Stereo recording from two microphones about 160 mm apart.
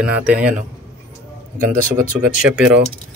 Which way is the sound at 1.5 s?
55° right (ahead or behind).